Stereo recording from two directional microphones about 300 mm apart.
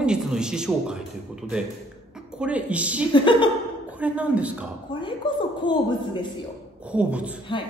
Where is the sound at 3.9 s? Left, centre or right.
Centre.